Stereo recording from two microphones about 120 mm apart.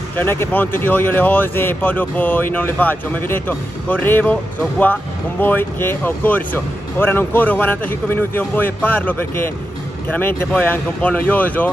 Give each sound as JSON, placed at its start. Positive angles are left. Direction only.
{"t": 0.1, "sound": "speech", "side_deg": 15}